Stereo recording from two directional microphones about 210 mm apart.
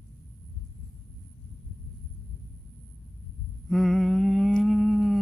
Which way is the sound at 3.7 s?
Centre (ahead or behind).